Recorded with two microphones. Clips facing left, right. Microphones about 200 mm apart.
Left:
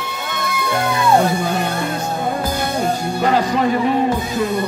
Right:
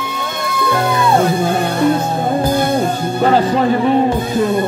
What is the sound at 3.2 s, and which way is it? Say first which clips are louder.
Music: right 4 dB; 30° right (ahead or behind).